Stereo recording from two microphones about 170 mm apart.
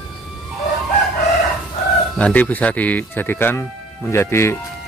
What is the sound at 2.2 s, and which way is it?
Speech, 10° left (ahead or behind).